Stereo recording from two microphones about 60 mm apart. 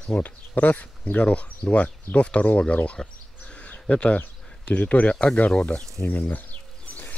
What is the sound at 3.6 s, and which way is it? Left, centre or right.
Bird, left.